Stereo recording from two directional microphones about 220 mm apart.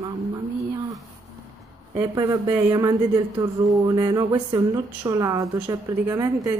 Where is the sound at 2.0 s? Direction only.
15° right (ahead or behind).